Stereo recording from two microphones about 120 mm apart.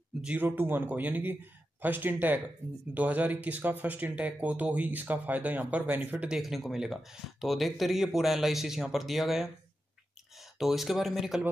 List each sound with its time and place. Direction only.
0.2 s speech: 15° right (ahead or behind)
10.6 s speech: centre (ahead or behind)